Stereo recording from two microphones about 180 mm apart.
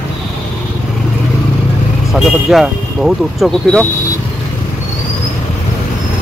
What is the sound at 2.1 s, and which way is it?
Speech, centre (ahead or behind).